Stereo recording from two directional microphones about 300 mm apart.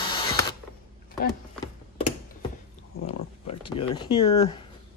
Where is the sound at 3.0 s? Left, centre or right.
Left.